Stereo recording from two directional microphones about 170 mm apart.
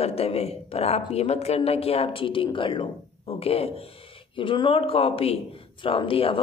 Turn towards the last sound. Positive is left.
turn(degrees=30)  # may be behind; listen again after turning